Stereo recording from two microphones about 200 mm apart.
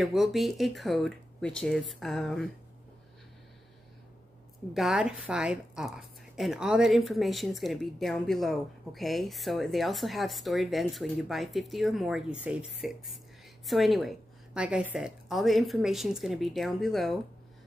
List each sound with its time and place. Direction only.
0.0 s a woman's voice: centre (ahead or behind)
4.7 s a woman's voice: centre (ahead or behind)